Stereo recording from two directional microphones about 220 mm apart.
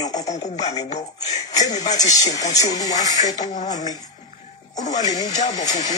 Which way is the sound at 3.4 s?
35° left (ahead or behind).